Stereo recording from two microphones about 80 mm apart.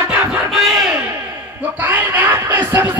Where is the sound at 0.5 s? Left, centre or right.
Centre.